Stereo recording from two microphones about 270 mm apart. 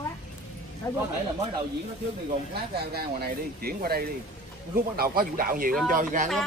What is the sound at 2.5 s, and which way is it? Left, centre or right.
Speech, right.